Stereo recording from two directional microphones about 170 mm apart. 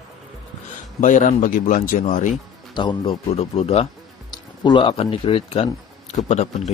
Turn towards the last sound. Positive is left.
turn(degrees=40)  # may be behind; listen again after turning